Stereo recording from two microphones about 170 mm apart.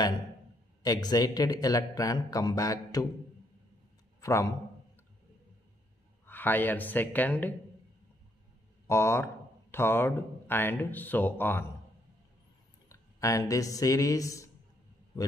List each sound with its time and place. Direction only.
0.8 s speech: 25° left (ahead or behind)
4.2 s a man's voice: 20° left (ahead or behind)
6.2 s speech: 10° left (ahead or behind)
8.8 s speech: 15° left (ahead or behind)
12.8 s speech: 20° left (ahead or behind)